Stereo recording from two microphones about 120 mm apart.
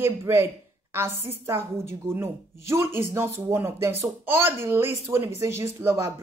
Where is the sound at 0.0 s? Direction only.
20° right (ahead or behind).